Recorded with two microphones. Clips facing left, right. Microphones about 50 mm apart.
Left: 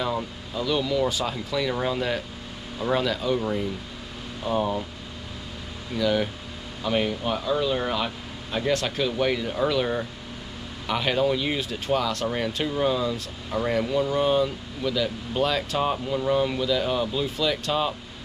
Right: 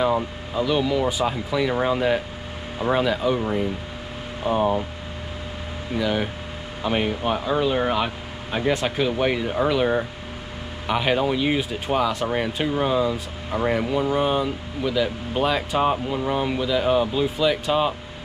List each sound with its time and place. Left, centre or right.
0.0 s speech: centre
5.9 s speech: centre